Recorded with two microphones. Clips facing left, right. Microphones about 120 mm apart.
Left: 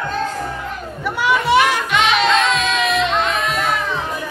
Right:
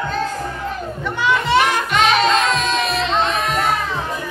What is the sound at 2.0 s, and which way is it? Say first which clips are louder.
Music: right 1 dB; 40° right (ahead or behind).